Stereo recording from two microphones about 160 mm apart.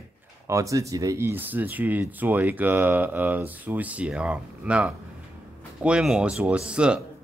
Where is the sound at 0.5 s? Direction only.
20° right (ahead or behind).